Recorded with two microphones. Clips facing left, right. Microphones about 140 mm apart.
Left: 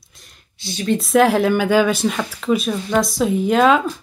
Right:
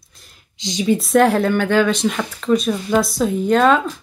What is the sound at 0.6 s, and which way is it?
Speech, 15° right (ahead or behind).